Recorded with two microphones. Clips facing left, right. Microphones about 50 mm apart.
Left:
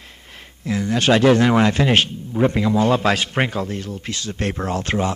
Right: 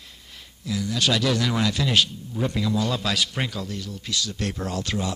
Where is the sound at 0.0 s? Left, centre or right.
Left.